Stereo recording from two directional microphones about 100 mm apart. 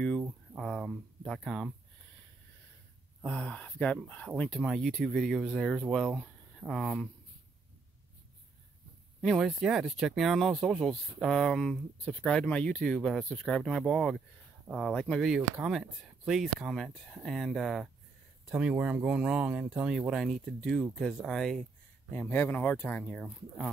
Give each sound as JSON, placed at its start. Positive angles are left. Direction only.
{"t": 0.6, "sound": "speech", "side_deg": 0}
{"t": 3.3, "sound": "speech", "side_deg": 10}
{"t": 9.4, "sound": "speech", "side_deg": -5}
{"t": 18.5, "sound": "speech", "side_deg": -10}
{"t": 22.1, "sound": "speech", "side_deg": 20}